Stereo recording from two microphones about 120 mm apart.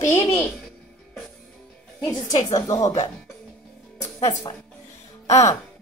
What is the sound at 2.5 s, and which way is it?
Speech, 30° left (ahead or behind).